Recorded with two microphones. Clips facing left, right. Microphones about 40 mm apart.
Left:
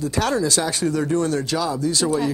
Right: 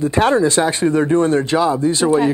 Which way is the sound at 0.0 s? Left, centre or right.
Right.